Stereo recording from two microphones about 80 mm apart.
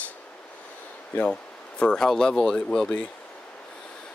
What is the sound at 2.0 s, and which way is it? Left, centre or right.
Speech, centre.